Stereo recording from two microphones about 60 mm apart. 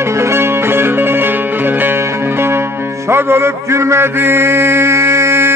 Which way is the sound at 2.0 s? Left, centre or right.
Right.